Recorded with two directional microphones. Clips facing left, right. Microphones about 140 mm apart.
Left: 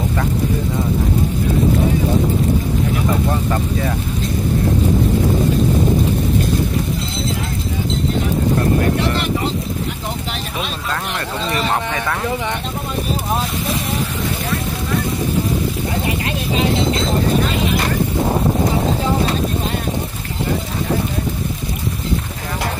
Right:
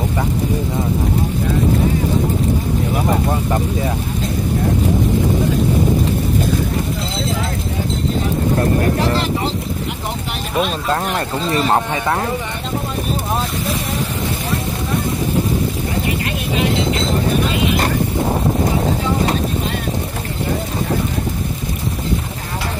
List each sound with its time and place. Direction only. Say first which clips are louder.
11.1 s speech: right 3 dB; 35° right (ahead or behind)